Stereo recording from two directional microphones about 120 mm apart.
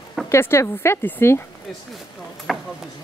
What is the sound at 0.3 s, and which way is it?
Speech, 20° left (ahead or behind).